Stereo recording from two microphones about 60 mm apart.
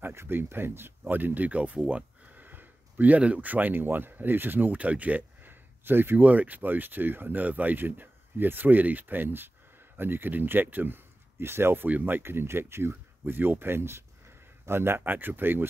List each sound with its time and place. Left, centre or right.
0.0 s speech: right
12.2 s speech: right